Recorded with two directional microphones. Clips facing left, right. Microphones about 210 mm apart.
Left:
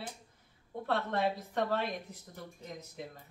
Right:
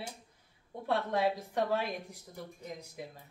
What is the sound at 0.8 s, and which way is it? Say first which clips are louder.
A man's voice: right 1 dB; 10° right (ahead or behind).